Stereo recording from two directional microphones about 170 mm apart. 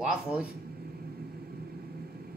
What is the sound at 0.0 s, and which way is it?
Speech, 5° right (ahead or behind).